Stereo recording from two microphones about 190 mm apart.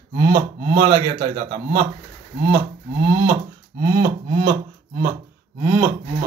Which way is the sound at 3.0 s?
15° right (ahead or behind).